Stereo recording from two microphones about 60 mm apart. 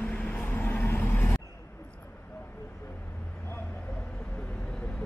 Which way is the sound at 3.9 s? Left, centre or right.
Centre.